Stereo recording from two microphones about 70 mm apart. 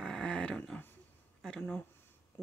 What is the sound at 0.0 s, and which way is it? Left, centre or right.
Dog, centre.